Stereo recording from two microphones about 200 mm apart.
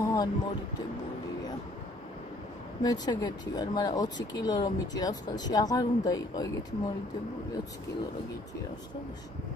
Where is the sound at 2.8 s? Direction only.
20° left (ahead or behind).